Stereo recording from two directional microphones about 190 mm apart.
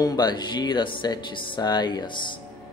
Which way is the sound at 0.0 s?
20° left (ahead or behind).